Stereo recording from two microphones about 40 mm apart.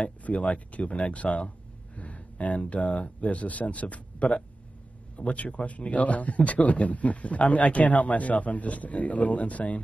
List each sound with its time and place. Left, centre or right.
0.0 s a man's voice: left